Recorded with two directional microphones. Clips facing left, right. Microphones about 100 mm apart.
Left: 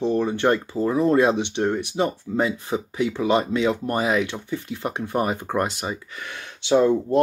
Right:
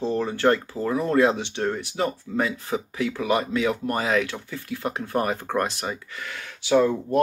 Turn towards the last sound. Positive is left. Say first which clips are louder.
# left 2 dB
turn(degrees=25)  # may be behind; listen again after turning